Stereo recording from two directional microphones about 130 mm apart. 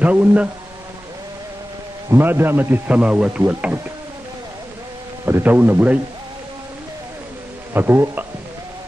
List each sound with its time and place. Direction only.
0.0 s a man's voice: 10° right (ahead or behind)
2.0 s a man's voice: 15° right (ahead or behind)
5.2 s a man's voice: 15° right (ahead or behind)
7.7 s a man's voice: 15° right (ahead or behind)